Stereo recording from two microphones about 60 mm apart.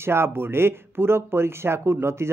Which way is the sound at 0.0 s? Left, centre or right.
Right.